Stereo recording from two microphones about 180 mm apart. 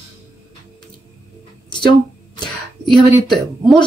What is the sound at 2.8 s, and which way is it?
Speech, centre (ahead or behind).